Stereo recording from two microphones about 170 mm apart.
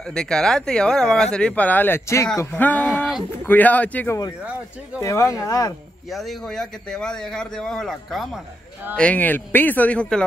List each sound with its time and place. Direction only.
0.0 s speech: 5° left (ahead or behind); by 5.8 s 20° left (ahead or behind)
6.0 s speech: centre (ahead or behind)